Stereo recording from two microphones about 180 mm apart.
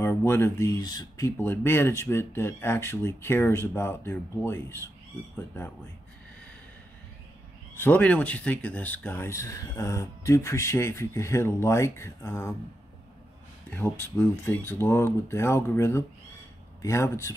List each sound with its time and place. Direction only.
0.0 s speech: 15° left (ahead or behind)
7.7 s speech: 10° left (ahead or behind)
13.7 s speech: 10° left (ahead or behind)